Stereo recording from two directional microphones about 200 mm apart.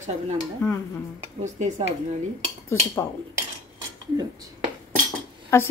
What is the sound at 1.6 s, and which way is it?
Speech, 35° right (ahead or behind).